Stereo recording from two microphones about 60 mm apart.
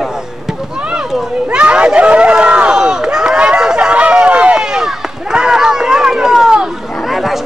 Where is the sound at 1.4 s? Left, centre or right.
Centre.